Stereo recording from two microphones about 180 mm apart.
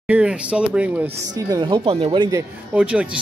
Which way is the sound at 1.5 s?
25° right (ahead or behind).